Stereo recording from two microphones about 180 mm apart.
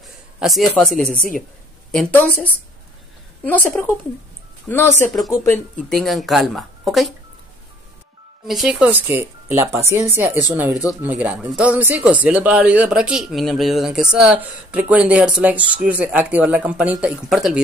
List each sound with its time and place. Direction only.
0.4 s a man's voice: centre (ahead or behind)
4.6 s speech: 10° left (ahead or behind)
8.5 s speech: 5° right (ahead or behind)